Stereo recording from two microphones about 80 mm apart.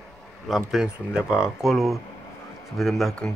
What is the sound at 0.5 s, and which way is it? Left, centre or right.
Speech, centre.